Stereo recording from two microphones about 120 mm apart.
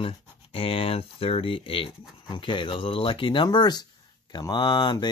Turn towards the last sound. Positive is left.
turn(degrees=35)  # may be behind; listen again after turning